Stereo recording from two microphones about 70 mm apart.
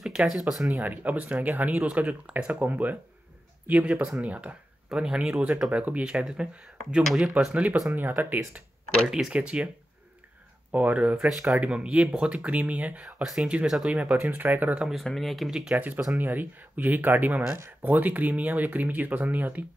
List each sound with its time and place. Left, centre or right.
0.0 s speech: centre
0.8 s speech: right
4.9 s speech: centre
8.2 s speech: right
9.1 s speech: centre
10.7 s speech: right
11.2 s speech: centre
11.6 s speech: centre
13.2 s speech: centre
13.9 s speech: centre
14.8 s speech: centre
16.2 s speech: right